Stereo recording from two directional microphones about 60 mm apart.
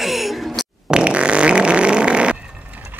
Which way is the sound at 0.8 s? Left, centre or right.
Centre.